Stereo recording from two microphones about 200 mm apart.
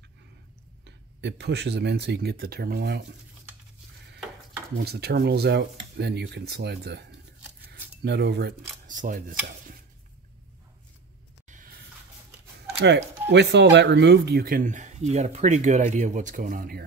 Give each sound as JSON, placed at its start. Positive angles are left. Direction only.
{"t": 0.8, "sound": "speech", "side_deg": -60}
{"t": 4.7, "sound": "speech", "side_deg": -55}
{"t": 11.4, "sound": "a sound", "side_deg": -40}
{"t": 12.7, "sound": "speech", "side_deg": -60}